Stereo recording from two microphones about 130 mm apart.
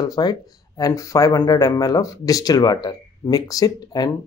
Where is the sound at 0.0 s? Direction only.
30° left (ahead or behind).